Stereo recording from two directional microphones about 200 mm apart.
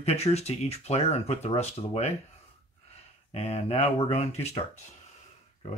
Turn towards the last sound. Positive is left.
turn(degrees=30)  # may be behind; listen again after turning